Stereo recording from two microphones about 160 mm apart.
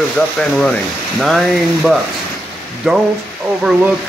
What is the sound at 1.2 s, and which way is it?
Speech, centre (ahead or behind).